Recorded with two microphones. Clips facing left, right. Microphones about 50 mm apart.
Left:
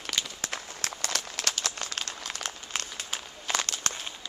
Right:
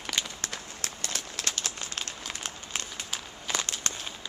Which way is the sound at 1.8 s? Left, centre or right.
Right.